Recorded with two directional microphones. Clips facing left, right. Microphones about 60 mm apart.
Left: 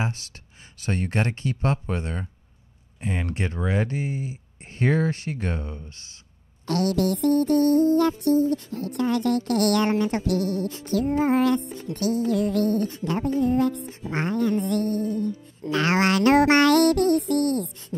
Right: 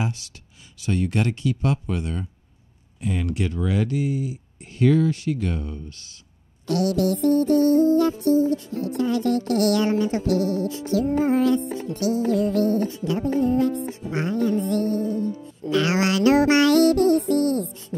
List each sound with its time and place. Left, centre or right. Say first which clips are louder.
0.0 s speech: right 1 dB; left
6.7 s music: right 1 dB; left